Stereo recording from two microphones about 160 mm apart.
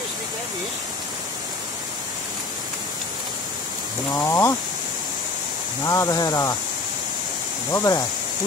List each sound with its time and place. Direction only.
4.1 s speech: 15° left (ahead or behind)
5.9 s speech: 20° left (ahead or behind)
7.7 s speech: 20° left (ahead or behind)